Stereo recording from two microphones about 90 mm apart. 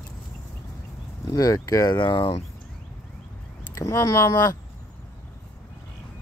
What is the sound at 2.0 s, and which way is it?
Speech, 70° left (ahead or behind).